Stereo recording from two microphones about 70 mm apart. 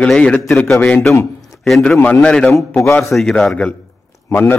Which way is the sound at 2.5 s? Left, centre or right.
Left.